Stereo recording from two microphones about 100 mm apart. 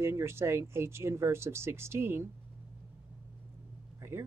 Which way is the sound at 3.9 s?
25° right (ahead or behind).